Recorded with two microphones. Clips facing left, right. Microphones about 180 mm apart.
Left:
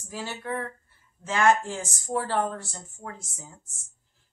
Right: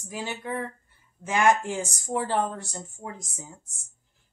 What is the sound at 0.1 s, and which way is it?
Speech, 15° right (ahead or behind).